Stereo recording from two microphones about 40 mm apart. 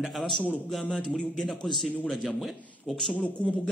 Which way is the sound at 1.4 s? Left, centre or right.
Centre.